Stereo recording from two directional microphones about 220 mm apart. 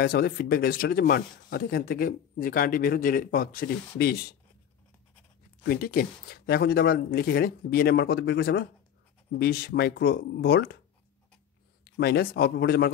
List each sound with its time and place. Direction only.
0.0 s speech: 45° left (ahead or behind)
5.6 s speech: 45° left (ahead or behind)
11.8 s speech: 45° left (ahead or behind)